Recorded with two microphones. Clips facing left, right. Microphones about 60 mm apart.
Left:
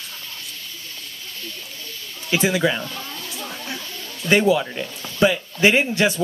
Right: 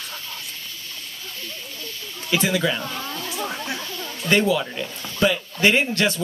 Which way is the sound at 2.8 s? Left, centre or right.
Right.